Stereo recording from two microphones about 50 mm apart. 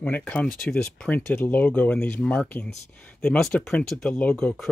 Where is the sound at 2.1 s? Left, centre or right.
Centre.